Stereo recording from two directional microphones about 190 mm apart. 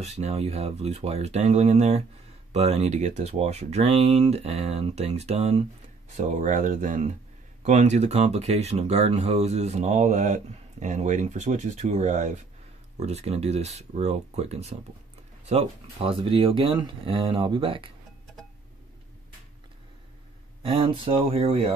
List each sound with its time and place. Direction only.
0.0 s speech: 35° right (ahead or behind)
20.6 s speech: 30° right (ahead or behind)